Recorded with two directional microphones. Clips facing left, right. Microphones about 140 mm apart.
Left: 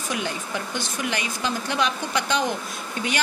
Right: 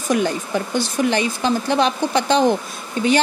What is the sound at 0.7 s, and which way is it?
A woman's voice, 35° right (ahead or behind).